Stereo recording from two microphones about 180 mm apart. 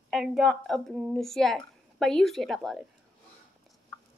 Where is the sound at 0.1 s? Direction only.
Centre (ahead or behind).